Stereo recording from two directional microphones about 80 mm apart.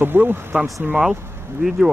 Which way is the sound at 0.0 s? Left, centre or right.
Right.